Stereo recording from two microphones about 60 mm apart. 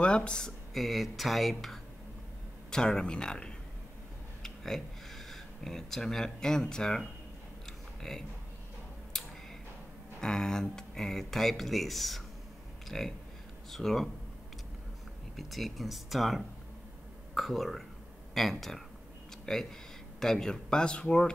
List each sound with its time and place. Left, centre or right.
0.0 s speech: centre
0.7 s speech: centre
7.6 s a sound: centre
9.1 s tick-tock: centre
10.2 s speech: centre
15.3 s speech: centre